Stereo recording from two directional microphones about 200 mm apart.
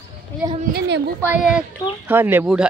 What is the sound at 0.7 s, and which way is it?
Speech, 55° right (ahead or behind).